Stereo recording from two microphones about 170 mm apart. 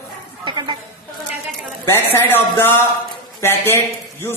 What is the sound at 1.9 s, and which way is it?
Speech, 15° left (ahead or behind).